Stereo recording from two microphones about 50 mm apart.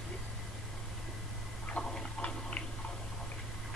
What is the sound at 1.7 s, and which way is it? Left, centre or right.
Tick-tock, centre.